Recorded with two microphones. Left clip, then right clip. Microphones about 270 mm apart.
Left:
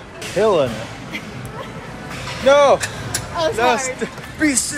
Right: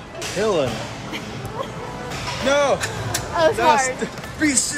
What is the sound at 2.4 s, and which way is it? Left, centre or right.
Speech, centre.